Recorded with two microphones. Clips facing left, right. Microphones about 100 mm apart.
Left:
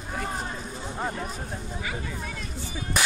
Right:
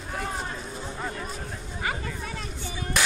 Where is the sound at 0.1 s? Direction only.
Centre (ahead or behind).